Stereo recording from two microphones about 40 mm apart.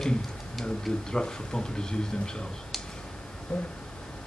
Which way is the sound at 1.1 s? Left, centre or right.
Centre.